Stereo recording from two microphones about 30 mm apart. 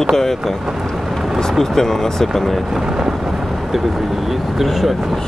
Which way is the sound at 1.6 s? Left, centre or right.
Centre.